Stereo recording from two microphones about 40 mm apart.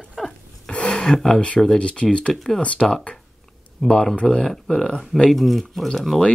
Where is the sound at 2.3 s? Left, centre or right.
Centre.